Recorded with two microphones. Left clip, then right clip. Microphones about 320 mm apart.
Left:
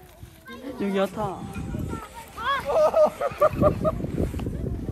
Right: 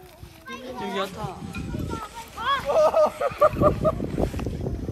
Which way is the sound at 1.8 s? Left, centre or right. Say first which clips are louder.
Right 3 dB; centre.